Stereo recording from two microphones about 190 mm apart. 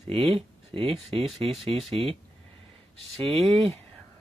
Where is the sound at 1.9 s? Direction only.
30° right (ahead or behind).